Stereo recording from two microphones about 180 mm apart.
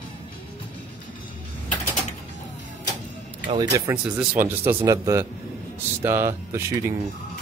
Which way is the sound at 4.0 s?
5° right (ahead or behind).